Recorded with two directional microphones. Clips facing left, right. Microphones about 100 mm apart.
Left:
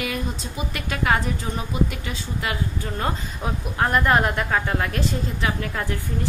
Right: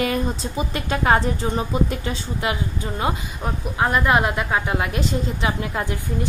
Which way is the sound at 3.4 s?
5° right (ahead or behind).